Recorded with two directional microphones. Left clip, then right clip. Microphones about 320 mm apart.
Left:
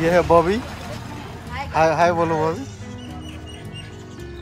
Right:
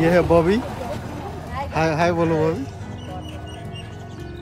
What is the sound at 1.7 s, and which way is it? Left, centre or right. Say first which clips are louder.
Speech: left 3 dB; centre.